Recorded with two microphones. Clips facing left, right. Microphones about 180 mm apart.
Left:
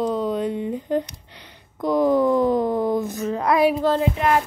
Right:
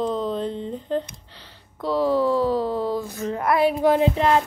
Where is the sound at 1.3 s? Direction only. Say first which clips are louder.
Left 1 dB; 15° left (ahead or behind).